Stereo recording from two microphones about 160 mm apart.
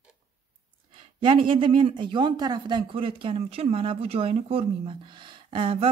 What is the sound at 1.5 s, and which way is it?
Speech, 35° right (ahead or behind).